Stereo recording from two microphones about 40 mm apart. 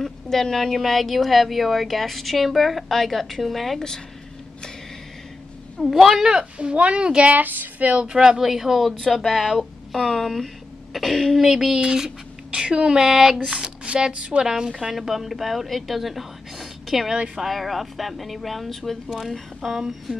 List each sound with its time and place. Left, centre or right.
0.0 s a woman's voice: centre
5.8 s a woman's voice: centre
6.2 s speech: centre
6.7 s speech: right
7.3 s speech: right
7.8 s speech: right
8.4 s speech: centre
9.2 s a woman's voice: centre
11.4 s a woman's voice: centre